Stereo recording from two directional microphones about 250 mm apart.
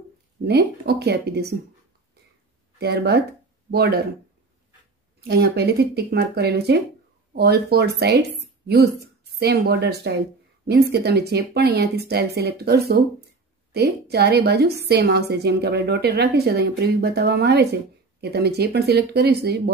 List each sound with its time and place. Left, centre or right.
0.5 s a woman's voice: right
2.8 s a woman's voice: right
5.3 s a woman's voice: right